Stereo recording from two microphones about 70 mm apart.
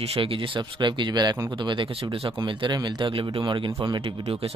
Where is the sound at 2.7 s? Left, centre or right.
Right.